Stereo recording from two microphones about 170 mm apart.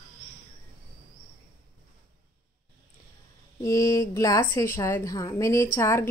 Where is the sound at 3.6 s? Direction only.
20° left (ahead or behind).